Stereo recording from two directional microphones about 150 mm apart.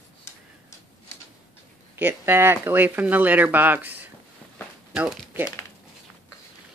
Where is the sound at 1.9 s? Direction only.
15° right (ahead or behind).